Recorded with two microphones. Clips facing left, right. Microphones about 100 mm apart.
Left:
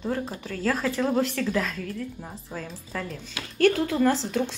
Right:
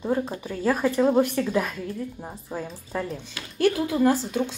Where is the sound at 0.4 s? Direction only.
15° right (ahead or behind).